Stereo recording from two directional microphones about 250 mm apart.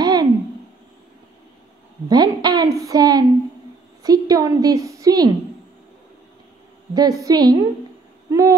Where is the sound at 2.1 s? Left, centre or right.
Centre.